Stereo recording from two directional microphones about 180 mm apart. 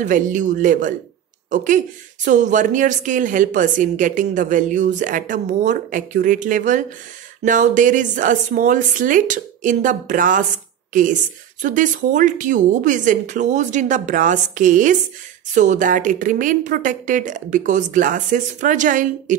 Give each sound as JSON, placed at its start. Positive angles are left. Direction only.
{"t": 0.0, "sound": "a woman's voice", "side_deg": -45}